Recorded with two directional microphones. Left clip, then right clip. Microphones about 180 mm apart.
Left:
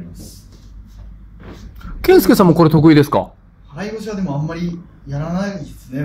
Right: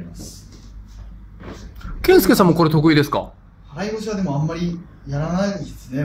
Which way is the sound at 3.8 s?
Centre (ahead or behind).